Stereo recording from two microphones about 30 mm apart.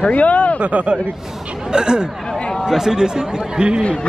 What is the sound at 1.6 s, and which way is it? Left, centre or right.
Speech, right.